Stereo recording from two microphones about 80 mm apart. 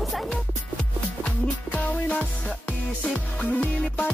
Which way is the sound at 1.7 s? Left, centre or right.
Centre.